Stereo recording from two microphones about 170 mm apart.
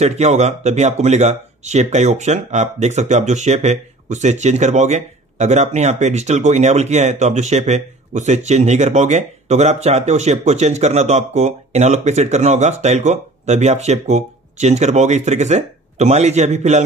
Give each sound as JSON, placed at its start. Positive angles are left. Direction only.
{"t": 0.0, "sound": "speech", "side_deg": -40}